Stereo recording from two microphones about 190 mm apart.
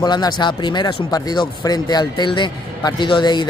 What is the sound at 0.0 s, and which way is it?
Speech, 20° left (ahead or behind).